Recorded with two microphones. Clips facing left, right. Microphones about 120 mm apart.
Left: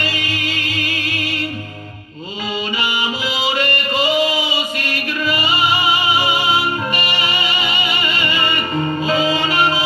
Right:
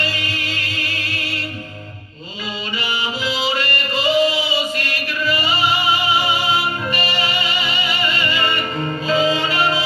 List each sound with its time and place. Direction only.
0.0 s music: 15° left (ahead or behind)
2.8 s music: 15° left (ahead or behind)